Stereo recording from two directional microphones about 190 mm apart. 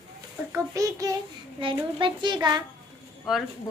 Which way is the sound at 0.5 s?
15° right (ahead or behind).